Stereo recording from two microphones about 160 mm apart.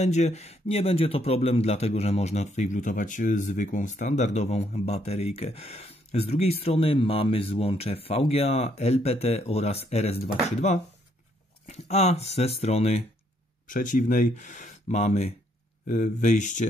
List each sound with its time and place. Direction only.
0.0 s speech: 45° left (ahead or behind)
13.7 s speech: 55° left (ahead or behind)